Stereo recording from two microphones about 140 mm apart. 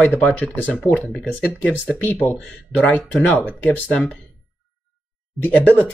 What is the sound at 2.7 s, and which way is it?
Speech, 10° left (ahead or behind).